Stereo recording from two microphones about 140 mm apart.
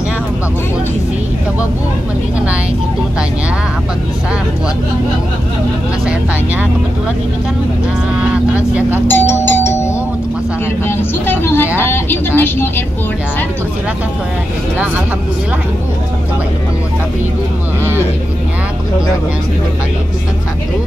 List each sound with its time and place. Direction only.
8.5 s vehicle: 10° right (ahead or behind)
9.0 s doorbell: 15° left (ahead or behind)
10.9 s vehicle: 15° left (ahead or behind)